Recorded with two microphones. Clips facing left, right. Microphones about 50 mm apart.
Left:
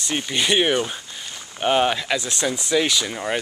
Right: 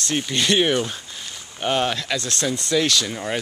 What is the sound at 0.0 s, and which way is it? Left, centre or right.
Speech, centre.